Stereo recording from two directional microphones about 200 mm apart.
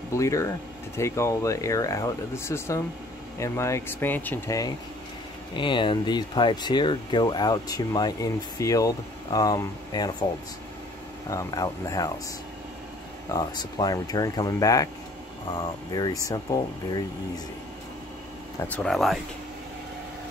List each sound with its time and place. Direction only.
0.1 s speech: 15° left (ahead or behind)
11.2 s speech: 15° left (ahead or behind)
13.3 s speech: 20° left (ahead or behind)
18.6 s speech: 5° left (ahead or behind)